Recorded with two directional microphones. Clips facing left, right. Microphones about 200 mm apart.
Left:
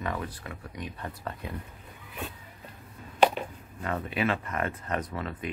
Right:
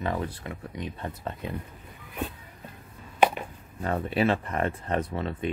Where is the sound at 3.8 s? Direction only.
35° right (ahead or behind).